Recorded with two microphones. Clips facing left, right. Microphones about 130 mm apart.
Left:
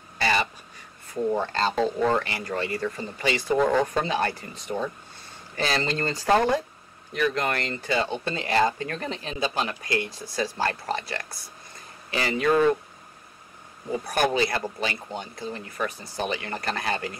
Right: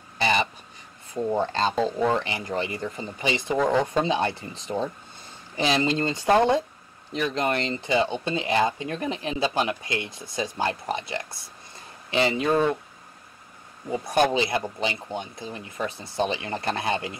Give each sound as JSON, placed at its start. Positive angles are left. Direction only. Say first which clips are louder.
{"t": 0.2, "sound": "a sound", "louder": "right 1 dB", "side_deg": -20}
{"t": 1.4, "sound": "speech", "louder": "right 1 dB", "side_deg": -20}
{"t": 5.6, "sound": "speech", "louder": "right 3 dB", "side_deg": -15}
{"t": 9.4, "sound": "speech", "louder": "right 2 dB", "side_deg": -30}
{"t": 13.9, "sound": "speech", "louder": "right 2 dB", "side_deg": -20}